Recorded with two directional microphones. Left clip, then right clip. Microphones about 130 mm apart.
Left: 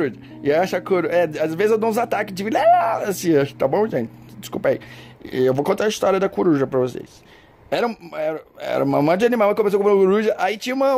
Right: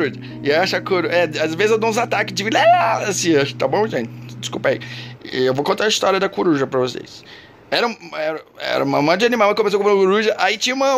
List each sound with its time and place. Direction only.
0.0 s speech: 40° left (ahead or behind)